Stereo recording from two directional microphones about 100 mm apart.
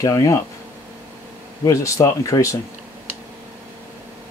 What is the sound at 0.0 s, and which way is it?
Speech, 35° left (ahead or behind).